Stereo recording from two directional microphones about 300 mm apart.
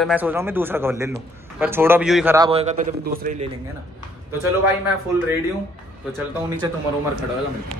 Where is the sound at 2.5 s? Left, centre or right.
Right.